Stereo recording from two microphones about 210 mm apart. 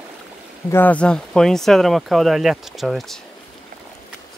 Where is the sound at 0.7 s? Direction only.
10° left (ahead or behind).